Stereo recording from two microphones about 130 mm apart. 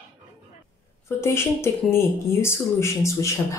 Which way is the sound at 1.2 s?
20° left (ahead or behind).